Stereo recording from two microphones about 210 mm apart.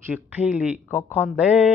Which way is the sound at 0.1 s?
5° right (ahead or behind).